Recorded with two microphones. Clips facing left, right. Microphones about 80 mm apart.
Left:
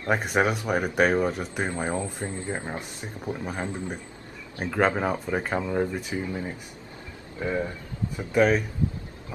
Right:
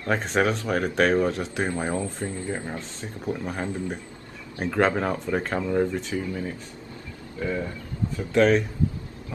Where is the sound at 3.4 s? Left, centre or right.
Centre; by 7.7 s left.